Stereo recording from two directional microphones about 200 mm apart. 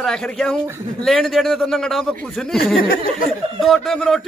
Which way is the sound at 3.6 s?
Centre (ahead or behind).